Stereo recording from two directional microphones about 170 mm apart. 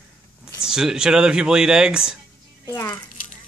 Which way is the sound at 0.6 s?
5° right (ahead or behind).